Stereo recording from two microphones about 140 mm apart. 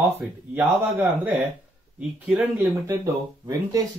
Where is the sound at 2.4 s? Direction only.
20° right (ahead or behind).